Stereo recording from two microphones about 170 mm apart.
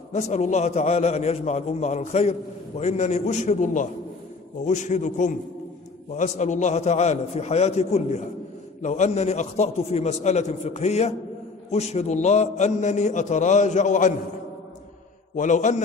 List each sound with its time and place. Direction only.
0.1 s a man's voice: 40° left (ahead or behind)
15.3 s a man's voice: 45° left (ahead or behind)